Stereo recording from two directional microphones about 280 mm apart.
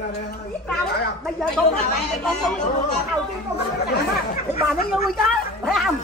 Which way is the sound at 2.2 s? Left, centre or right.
Centre.